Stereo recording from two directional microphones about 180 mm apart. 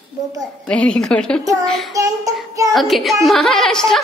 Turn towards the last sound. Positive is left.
turn(degrees=5)  # may be behind; listen again after turning